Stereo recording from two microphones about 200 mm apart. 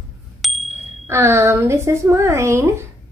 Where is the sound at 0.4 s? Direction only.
Centre (ahead or behind).